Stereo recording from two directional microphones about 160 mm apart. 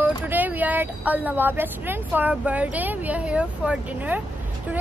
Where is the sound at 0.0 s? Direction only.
10° right (ahead or behind).